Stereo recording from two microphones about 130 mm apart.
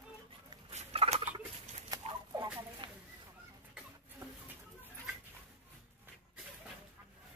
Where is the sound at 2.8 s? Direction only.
35° right (ahead or behind).